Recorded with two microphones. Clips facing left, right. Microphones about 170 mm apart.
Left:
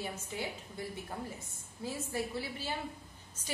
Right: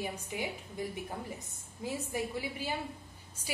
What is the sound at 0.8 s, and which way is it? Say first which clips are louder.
A woman's voice: right 2 dB; 15° right (ahead or behind).